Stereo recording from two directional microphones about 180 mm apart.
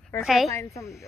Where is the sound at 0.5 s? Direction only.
15° left (ahead or behind).